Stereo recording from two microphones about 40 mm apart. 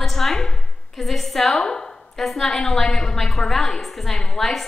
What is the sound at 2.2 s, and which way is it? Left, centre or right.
A woman's voice, centre.